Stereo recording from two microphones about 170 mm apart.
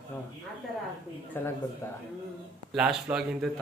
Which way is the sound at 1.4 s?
15° left (ahead or behind).